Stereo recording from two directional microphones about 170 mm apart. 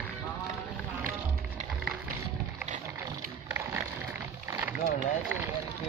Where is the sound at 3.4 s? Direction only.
15° right (ahead or behind).